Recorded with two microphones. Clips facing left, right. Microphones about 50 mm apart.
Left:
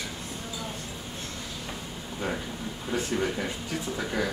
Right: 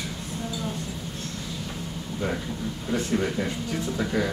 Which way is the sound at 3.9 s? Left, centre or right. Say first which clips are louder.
Right 3 dB; centre.